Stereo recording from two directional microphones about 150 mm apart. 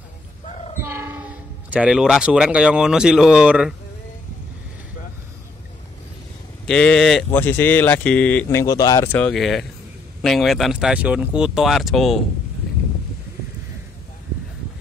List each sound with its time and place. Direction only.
0.5 s a sound: 45° left (ahead or behind)
0.8 s speech: 15° right (ahead or behind)
6.7 s speech: 5° left (ahead or behind)
7.2 s speech: 15° left (ahead or behind)
9.3 s speech: centre (ahead or behind)